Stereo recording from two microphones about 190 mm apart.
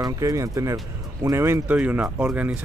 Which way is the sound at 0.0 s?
15° right (ahead or behind).